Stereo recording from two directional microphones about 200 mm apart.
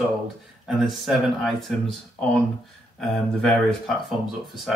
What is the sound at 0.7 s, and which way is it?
Speech, centre (ahead or behind).